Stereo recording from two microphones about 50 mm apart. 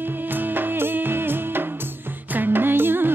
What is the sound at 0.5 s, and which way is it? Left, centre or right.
Music, right.